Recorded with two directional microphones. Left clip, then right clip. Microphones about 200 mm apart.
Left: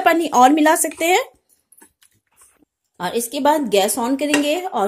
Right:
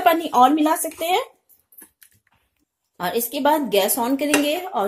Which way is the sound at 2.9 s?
10° left (ahead or behind).